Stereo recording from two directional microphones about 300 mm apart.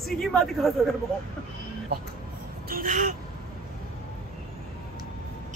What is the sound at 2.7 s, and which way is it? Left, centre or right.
Speech, right.